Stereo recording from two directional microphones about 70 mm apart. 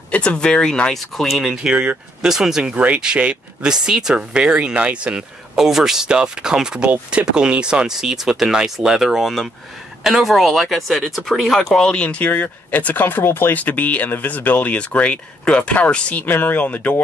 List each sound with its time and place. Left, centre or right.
0.1 s speech: centre
1.7 s speech: centre; by 16.9 s left